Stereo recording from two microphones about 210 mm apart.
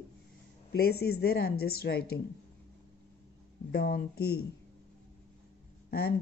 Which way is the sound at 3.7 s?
45° left (ahead or behind).